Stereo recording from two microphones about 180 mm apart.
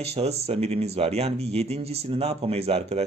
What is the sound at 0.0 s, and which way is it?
Speech, 35° right (ahead or behind).